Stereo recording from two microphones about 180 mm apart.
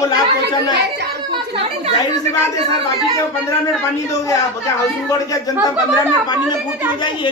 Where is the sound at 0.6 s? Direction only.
70° right (ahead or behind).